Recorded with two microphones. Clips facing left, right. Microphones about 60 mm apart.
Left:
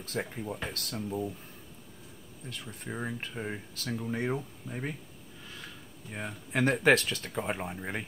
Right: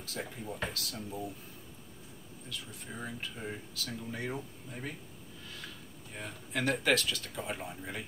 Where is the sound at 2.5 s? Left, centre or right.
Left.